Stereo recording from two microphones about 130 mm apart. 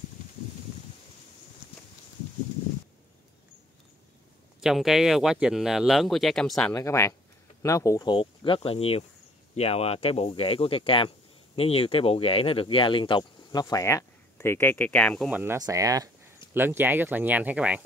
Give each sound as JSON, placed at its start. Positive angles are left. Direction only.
{"t": 4.6, "sound": "speech", "side_deg": -5}
{"t": 6.7, "sound": "speech", "side_deg": 20}
{"t": 8.1, "sound": "speech", "side_deg": 45}
{"t": 15.2, "sound": "speech", "side_deg": -10}
{"t": 15.5, "sound": "speech", "side_deg": -25}
{"t": 16.5, "sound": "speech", "side_deg": -15}